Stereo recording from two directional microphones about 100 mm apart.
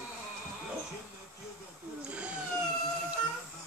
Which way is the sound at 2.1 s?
15° right (ahead or behind).